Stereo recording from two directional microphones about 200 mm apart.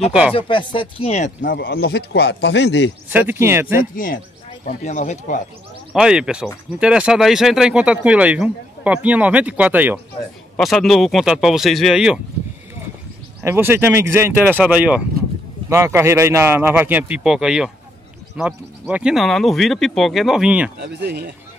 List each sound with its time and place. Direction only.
0.3 s speech: 25° left (ahead or behind); by 2.9 s 60° left (ahead or behind)
3.1 s speech: 10° right (ahead or behind)
3.9 s speech: 45° left (ahead or behind)
5.9 s speech: 5° right (ahead or behind)
13.4 s speech: 10° right (ahead or behind)
20.8 s speech: 55° right (ahead or behind)